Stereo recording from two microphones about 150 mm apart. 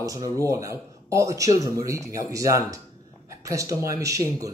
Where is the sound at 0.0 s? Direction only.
25° right (ahead or behind).